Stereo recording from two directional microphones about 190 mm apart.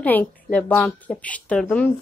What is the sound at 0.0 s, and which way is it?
Speech, 10° left (ahead or behind).